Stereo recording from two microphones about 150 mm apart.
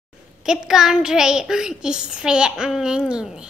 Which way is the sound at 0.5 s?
5° right (ahead or behind).